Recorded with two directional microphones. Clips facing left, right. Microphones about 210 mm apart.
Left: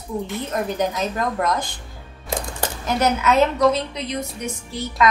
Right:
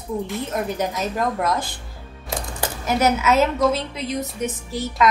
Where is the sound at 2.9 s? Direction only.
5° right (ahead or behind).